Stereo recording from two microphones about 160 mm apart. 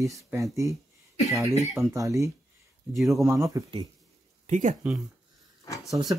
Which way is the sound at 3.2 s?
20° right (ahead or behind).